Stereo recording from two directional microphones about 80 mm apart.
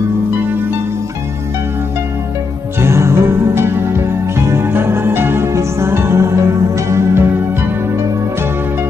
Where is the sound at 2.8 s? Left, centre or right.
Right.